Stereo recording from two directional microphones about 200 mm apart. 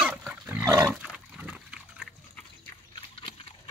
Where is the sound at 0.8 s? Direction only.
Centre (ahead or behind).